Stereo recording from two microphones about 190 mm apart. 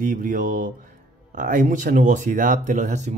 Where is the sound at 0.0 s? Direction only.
50° right (ahead or behind).